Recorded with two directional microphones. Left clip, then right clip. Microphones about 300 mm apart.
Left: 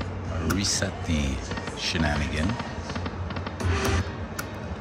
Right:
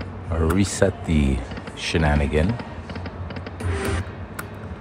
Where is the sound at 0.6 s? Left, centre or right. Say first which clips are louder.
Right 7 dB; right.